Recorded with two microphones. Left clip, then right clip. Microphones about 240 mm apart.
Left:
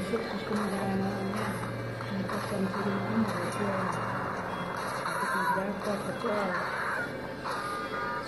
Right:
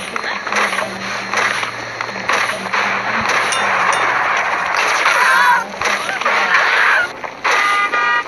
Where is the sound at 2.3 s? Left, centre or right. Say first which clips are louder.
Right 18 dB; right.